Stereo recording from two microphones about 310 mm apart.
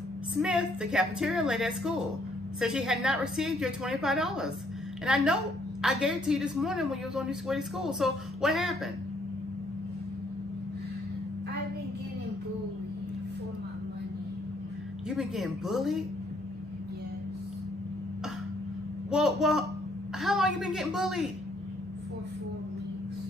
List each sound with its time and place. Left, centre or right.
0.3 s a woman's voice: centre
15.0 s a woman's voice: centre
19.0 s a woman's voice: centre